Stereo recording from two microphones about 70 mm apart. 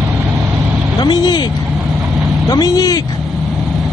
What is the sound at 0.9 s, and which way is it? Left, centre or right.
Speech, left.